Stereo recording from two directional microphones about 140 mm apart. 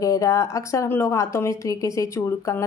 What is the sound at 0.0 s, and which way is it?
A woman's voice, 25° left (ahead or behind).